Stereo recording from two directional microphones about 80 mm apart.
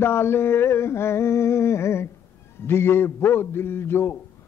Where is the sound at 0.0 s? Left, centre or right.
Left.